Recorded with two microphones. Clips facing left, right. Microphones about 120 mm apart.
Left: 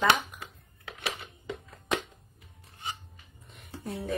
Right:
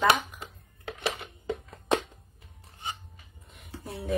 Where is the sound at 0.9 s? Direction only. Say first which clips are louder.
Right 5 dB; 45° right (ahead or behind).